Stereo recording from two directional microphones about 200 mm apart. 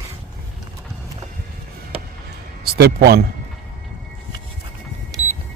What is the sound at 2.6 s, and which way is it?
Speech, 50° right (ahead or behind).